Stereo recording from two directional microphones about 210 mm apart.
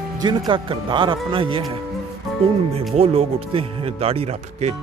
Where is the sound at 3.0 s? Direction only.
30° right (ahead or behind).